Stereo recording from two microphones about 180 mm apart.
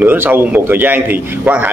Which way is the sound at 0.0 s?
10° right (ahead or behind).